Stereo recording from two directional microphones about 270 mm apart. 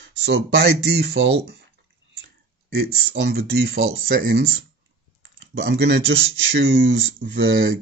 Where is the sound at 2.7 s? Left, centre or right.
Right.